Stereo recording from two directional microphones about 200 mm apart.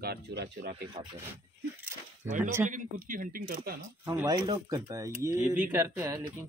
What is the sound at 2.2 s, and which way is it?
Speech, 40° right (ahead or behind).